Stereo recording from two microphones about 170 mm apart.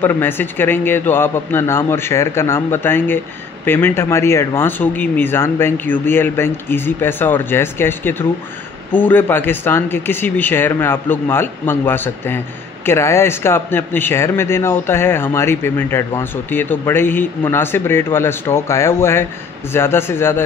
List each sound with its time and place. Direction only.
0.0 s speech: 10° left (ahead or behind)